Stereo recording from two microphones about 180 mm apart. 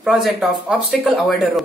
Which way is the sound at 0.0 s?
5° right (ahead or behind).